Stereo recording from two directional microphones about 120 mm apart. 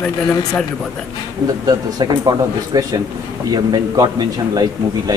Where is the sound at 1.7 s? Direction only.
35° right (ahead or behind).